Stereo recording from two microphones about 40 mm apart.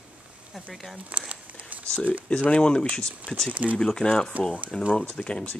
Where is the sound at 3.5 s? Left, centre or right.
Right.